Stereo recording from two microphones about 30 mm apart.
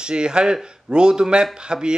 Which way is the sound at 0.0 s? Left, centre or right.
Right.